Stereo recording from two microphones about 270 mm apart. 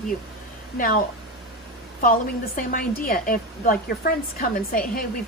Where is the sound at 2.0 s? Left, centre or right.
Left.